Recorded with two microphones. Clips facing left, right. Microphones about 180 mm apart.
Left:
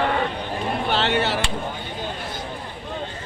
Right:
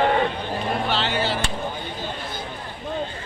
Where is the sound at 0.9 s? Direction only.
65° left (ahead or behind).